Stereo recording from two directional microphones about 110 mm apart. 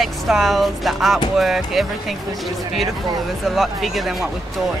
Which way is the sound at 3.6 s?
Centre (ahead or behind).